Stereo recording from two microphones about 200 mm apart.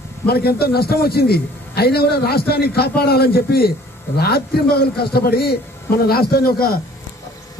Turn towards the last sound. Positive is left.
turn(degrees=50)  # may be behind; listen again after turning